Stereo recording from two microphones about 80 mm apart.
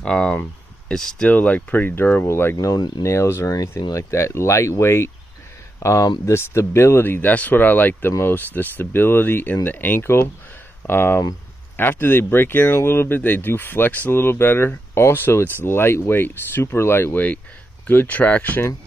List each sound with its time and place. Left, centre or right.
0.0 s speech: centre; by 2.5 s left
2.5 s speech: left; by 18.6 s centre